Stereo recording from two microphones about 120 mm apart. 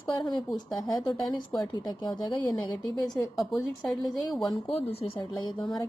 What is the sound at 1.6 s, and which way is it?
Speech, 35° left (ahead or behind).